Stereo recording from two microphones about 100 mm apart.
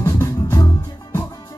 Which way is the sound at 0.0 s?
35° left (ahead or behind).